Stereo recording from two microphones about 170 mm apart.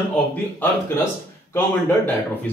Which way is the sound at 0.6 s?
15° left (ahead or behind).